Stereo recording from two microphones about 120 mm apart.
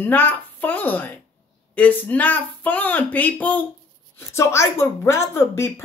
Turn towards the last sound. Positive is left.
turn(degrees=20)  # may be behind; listen again after turning